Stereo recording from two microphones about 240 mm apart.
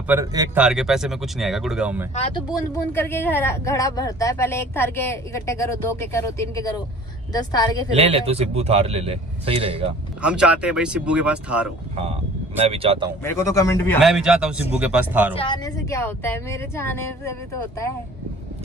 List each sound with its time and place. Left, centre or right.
0.1 s speech: centre
0.7 s speech: centre
2.1 s speech: left
2.7 s speech: centre
7.9 s a man's voice: right
10.2 s speech: centre
12.0 s a man's voice: right
13.2 s speech: centre
14.0 s speech: centre
15.3 s speech: centre